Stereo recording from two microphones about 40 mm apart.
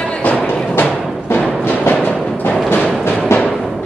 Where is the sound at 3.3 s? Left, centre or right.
Left.